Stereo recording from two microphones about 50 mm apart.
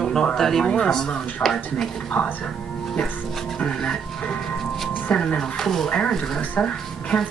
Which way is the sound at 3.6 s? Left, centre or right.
Centre.